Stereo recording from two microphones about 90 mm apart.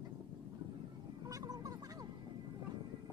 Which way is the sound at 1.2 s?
40° right (ahead or behind).